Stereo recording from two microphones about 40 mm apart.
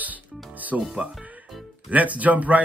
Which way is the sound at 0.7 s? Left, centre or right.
Centre.